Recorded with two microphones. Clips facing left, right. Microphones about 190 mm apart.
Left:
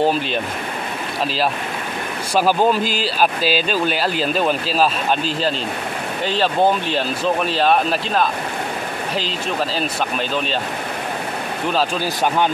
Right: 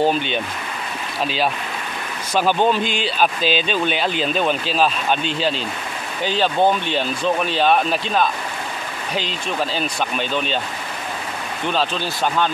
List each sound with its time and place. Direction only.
0.0 s a man's voice: centre (ahead or behind)
2.3 s a man's voice: 5° left (ahead or behind)
9.8 s a man's voice: centre (ahead or behind)